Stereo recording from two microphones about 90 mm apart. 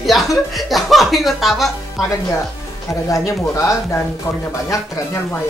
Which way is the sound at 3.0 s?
35° left (ahead or behind).